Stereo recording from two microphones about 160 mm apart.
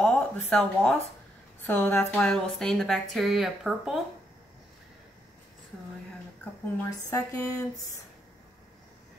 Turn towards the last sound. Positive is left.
turn(degrees=20)  # may be behind; listen again after turning